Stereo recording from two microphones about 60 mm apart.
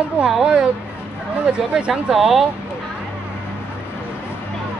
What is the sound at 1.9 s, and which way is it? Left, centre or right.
Speech, centre.